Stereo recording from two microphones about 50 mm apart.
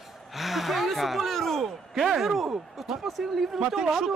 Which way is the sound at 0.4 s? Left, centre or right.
Centre.